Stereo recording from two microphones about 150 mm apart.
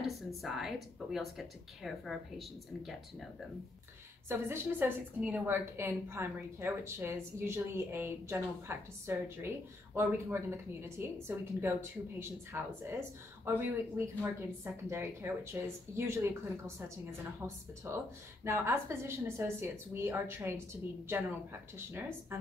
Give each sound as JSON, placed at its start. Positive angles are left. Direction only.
{"t": 0.0, "sound": "a woman's voice", "side_deg": 0}
{"t": 4.3, "sound": "a woman's voice", "side_deg": -15}